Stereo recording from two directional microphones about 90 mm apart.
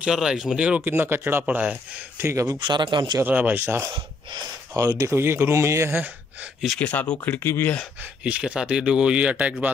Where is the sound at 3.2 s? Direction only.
20° right (ahead or behind).